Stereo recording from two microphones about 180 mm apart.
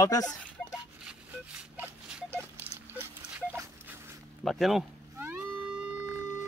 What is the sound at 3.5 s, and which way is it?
Dog, 10° right (ahead or behind).